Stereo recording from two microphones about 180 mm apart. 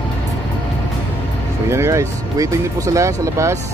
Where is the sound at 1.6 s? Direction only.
15° right (ahead or behind).